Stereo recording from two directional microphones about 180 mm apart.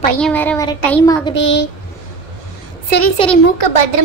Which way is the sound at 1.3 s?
85° left.